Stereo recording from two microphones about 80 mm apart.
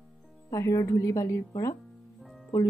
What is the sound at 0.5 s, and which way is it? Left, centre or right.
A woman's voice, left.